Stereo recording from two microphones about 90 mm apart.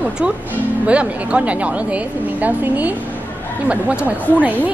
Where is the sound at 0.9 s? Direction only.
15° right (ahead or behind).